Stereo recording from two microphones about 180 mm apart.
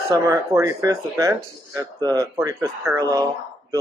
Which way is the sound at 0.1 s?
15° right (ahead or behind).